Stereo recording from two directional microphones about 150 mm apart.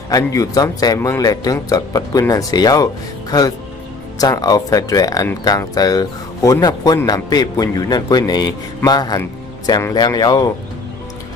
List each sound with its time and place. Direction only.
0.1 s a man's voice: 25° left (ahead or behind)